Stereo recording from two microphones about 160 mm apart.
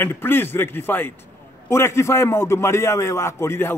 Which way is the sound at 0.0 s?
15° left (ahead or behind).